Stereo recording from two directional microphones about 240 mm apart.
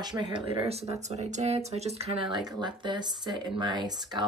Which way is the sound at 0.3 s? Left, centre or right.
Centre.